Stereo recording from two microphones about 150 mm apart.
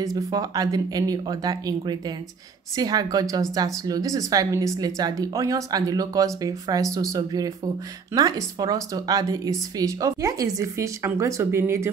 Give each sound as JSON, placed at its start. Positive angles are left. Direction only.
{"t": 0.0, "sound": "a woman's voice", "side_deg": -25}